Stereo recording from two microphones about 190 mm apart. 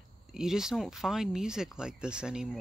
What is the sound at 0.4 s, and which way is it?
Speech, 5° right (ahead or behind).